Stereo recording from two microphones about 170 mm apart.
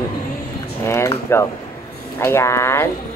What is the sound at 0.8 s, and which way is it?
Speech, 15° left (ahead or behind).